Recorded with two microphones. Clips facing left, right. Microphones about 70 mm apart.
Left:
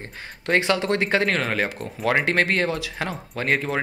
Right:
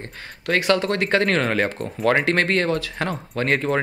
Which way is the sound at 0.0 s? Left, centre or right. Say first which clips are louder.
Right 2 dB; centre.